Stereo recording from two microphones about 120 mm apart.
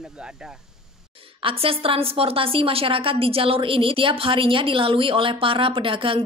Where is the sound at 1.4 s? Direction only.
50° right (ahead or behind).